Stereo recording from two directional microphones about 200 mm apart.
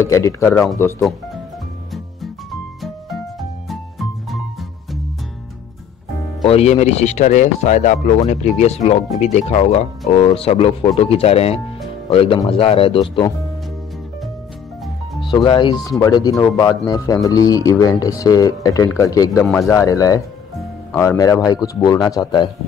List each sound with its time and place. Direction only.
0.0 s speech: 15° left (ahead or behind)
2.8 s music: centre (ahead or behind)
6.4 s a man's voice: 30° left (ahead or behind)
15.1 s speech: 25° left (ahead or behind)
19.4 s speech: 5° left (ahead or behind)
19.7 s a man's voice: 15° left (ahead or behind)